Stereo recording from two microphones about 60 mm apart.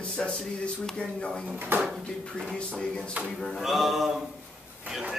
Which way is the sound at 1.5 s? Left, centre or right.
Right.